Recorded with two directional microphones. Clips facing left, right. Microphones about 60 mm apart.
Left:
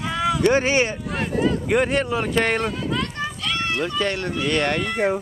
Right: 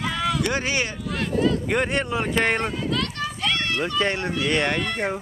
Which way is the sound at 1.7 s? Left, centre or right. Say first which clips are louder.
Left 3 dB; centre.